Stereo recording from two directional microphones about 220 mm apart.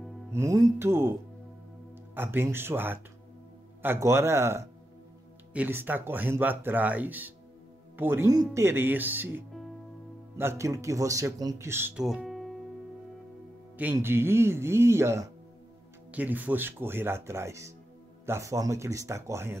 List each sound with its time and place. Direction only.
0.3 s speech: 15° right (ahead or behind)
2.1 s speech: 10° right (ahead or behind)
13.7 s speech: 10° right (ahead or behind)